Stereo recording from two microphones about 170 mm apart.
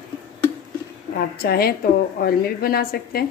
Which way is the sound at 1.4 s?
65° left (ahead or behind).